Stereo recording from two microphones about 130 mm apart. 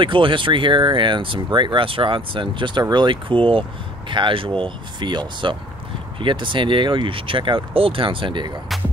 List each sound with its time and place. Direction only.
0.0 s speech: 40° right (ahead or behind)